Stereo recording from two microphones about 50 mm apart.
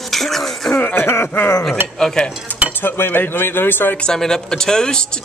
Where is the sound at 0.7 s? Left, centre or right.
Left.